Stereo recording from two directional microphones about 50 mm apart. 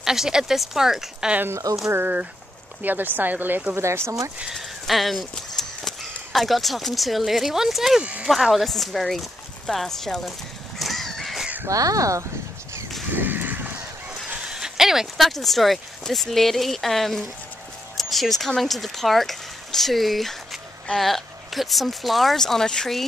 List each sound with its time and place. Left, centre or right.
0.0 s speech: centre
2.8 s speech: right
3.7 s speech: right
4.5 s speech: centre
8.0 s speech: right
8.3 s speech: centre
10.8 s crow: centre
11.6 s speech: right
13.1 s a sound: right
14.5 s speech: centre